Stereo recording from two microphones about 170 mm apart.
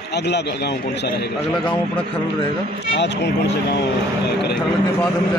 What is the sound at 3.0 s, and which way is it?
Speech, 90° left.